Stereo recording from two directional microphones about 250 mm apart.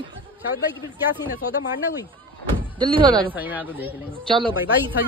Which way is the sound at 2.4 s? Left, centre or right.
Centre.